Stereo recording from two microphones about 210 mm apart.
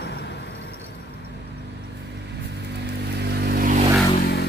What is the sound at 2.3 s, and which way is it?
Vehicle, 55° right (ahead or behind).